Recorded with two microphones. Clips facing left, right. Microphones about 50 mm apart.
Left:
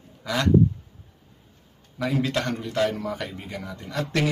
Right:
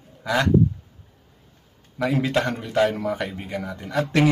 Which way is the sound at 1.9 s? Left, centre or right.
Centre.